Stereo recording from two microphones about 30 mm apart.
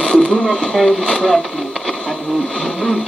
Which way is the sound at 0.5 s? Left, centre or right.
Centre.